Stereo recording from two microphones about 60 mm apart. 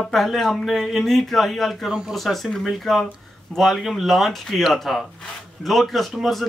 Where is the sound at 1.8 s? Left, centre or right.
Centre.